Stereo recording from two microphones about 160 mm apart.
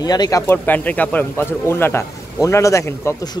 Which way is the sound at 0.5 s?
10° left (ahead or behind).